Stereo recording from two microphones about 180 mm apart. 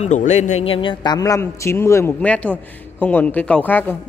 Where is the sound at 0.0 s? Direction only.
40° left (ahead or behind).